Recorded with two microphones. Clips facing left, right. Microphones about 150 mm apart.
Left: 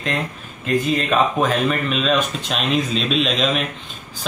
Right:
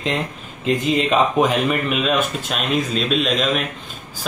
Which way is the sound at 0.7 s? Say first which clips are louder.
Right 1 dB; 20° right (ahead or behind).